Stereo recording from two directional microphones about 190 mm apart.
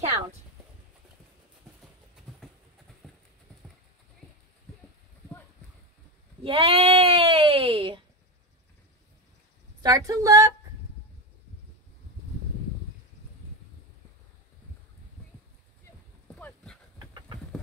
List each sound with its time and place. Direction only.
6.4 s sheep: 30° right (ahead or behind)
9.8 s a woman's voice: 20° right (ahead or behind)
16.3 s a sound: 10° left (ahead or behind)